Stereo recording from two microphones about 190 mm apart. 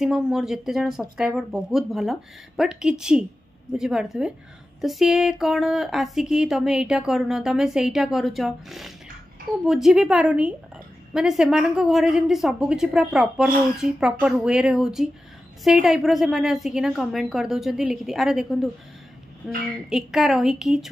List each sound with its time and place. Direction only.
0.0 s speech: centre (ahead or behind)